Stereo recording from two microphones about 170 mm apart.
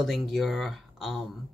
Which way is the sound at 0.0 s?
Centre (ahead or behind).